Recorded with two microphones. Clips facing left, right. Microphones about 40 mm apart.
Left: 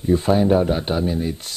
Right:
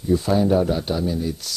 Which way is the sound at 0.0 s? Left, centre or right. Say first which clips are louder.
Left 2 dB; left.